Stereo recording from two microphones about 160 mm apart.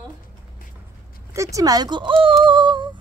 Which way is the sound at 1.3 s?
20° right (ahead or behind).